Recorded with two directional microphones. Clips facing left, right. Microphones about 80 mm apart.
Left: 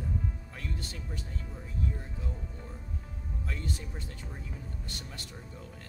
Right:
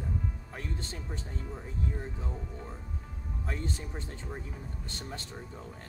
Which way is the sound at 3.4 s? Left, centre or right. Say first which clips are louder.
Right 2 dB; right.